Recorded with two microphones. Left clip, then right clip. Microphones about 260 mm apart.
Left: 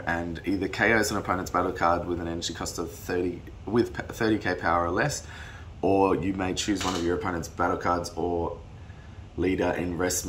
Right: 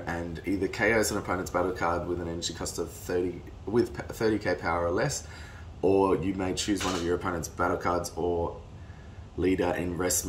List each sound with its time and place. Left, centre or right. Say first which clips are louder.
0.0 s speech: left 5 dB; centre